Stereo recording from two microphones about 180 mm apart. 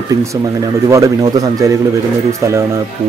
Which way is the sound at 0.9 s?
20° right (ahead or behind).